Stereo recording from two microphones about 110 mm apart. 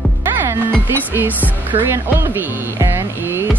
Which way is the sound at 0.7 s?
15° right (ahead or behind).